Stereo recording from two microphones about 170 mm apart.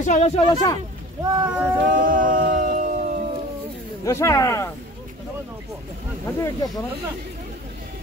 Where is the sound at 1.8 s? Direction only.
55° right (ahead or behind).